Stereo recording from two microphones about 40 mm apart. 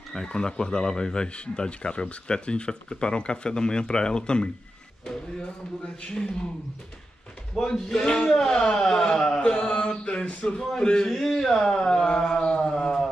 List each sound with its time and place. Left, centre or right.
0.1 s speech: centre
6.0 s speech: left
7.6 s speech: centre
8.0 s speech: left
8.3 s speech: centre
10.6 s speech: centre